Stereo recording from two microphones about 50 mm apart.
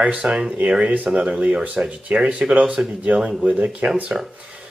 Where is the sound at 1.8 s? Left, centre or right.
Right.